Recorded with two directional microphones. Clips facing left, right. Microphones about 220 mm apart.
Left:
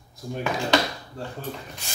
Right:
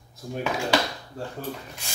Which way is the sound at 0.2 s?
Centre (ahead or behind).